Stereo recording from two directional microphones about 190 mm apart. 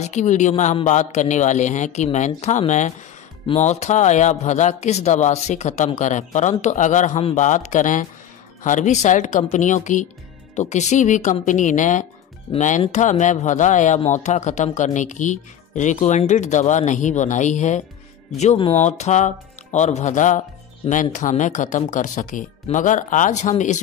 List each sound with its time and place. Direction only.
0.0 s speech: 40° left (ahead or behind)